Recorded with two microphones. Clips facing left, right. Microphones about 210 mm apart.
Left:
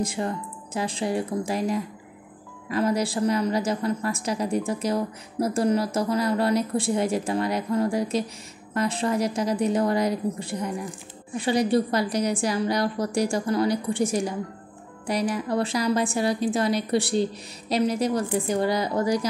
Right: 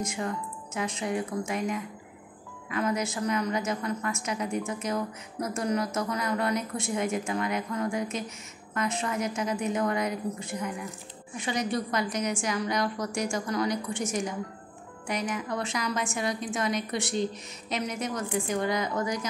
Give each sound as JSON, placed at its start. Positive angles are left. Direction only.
{"t": 0.0, "sound": "a woman's voice", "side_deg": 30}